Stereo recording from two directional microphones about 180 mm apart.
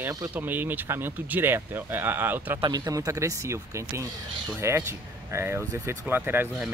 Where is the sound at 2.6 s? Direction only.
20° right (ahead or behind).